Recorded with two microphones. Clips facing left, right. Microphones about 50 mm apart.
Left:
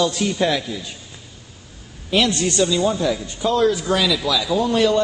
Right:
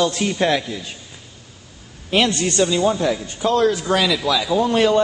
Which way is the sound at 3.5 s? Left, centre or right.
Centre.